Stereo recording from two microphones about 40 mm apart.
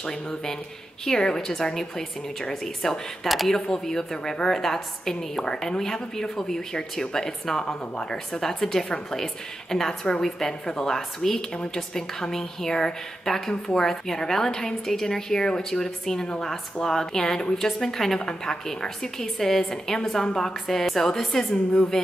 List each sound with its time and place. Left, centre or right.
0.0 s speech: centre
3.3 s a woman's voice: centre
3.5 s a woman's voice: centre
11.5 s speech: centre